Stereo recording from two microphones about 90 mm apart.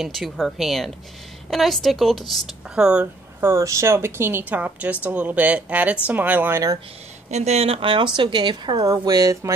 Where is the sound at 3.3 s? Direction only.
35° right (ahead or behind).